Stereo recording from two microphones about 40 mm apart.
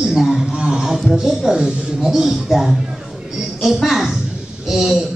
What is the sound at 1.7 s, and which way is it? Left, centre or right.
Speech, right.